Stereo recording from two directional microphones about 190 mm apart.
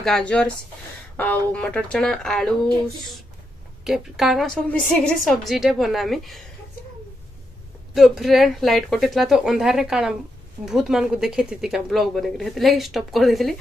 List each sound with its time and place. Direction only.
0.0 s speech: 5° left (ahead or behind)
3.8 s speech: centre (ahead or behind)
7.9 s speech: centre (ahead or behind)